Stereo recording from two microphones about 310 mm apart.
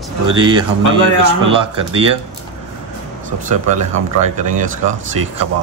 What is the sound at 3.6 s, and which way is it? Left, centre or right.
Speech, right.